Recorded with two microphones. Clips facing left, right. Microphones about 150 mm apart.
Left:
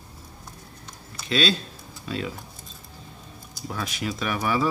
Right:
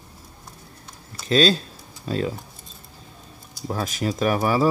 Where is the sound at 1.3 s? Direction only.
40° right (ahead or behind).